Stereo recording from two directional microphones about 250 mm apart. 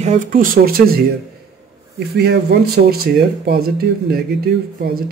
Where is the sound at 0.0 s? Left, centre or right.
Right.